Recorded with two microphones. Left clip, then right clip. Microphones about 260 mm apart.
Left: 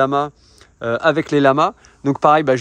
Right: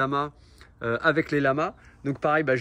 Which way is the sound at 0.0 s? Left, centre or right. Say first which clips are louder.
Left 9 dB; centre.